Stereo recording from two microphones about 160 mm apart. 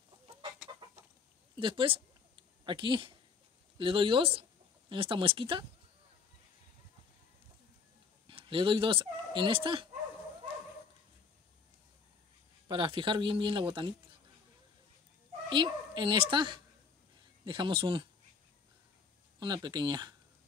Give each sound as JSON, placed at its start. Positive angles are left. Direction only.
{"t": 1.6, "sound": "speech", "side_deg": -30}
{"t": 8.3, "sound": "speech", "side_deg": -30}
{"t": 12.6, "sound": "speech", "side_deg": -30}
{"t": 15.5, "sound": "a woman's voice", "side_deg": -30}
{"t": 19.4, "sound": "a woman's voice", "side_deg": -25}